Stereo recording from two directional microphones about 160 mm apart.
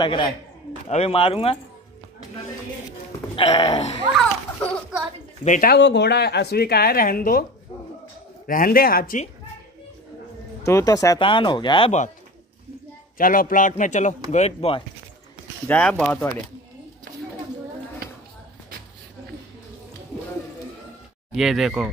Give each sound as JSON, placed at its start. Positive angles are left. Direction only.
{"t": 0.0, "sound": "speech", "side_deg": 30}
{"t": 3.3, "sound": "speech", "side_deg": 35}
{"t": 5.4, "sound": "speech", "side_deg": 50}
{"t": 5.7, "sound": "speech", "side_deg": 90}
{"t": 8.5, "sound": "a man's voice", "side_deg": 65}
{"t": 10.6, "sound": "speech", "side_deg": 20}
{"t": 11.1, "sound": "speech", "side_deg": 30}
{"t": 13.2, "sound": "speech", "side_deg": 60}
{"t": 15.7, "sound": "speech", "side_deg": 5}
{"t": 21.4, "sound": "speech", "side_deg": 0}